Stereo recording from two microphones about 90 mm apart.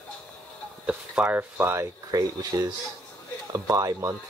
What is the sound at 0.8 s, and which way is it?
Speech, 15° right (ahead or behind).